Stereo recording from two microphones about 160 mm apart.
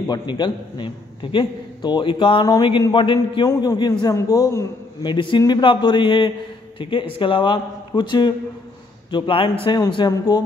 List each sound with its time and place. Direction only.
0.1 s a man's voice: 30° left (ahead or behind)